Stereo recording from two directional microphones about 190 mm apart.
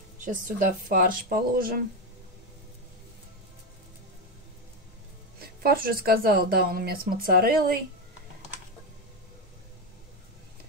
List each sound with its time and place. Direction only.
0.2 s speech: 45° right (ahead or behind)
5.6 s speech: 50° right (ahead or behind)